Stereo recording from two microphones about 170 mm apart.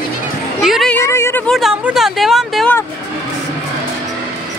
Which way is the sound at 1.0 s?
15° left (ahead or behind).